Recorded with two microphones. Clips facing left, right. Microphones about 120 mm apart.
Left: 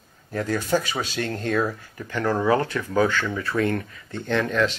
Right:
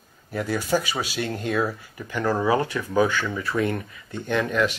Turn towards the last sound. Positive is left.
turn(degrees=-10)  # may be behind; listen again after turning